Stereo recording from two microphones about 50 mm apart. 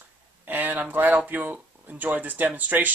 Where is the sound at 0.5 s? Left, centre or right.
Right.